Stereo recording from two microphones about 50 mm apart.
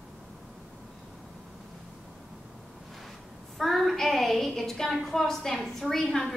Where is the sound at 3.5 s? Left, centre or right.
Centre.